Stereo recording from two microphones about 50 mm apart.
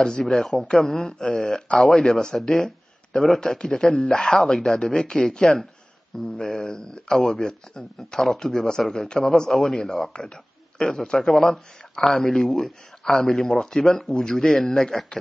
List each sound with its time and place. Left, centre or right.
0.0 s speech: centre